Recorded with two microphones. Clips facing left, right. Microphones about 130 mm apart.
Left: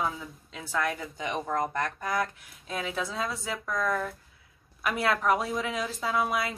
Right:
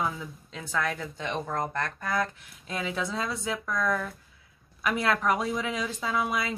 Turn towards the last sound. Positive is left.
turn(degrees=0)  # may be behind; listen again after turning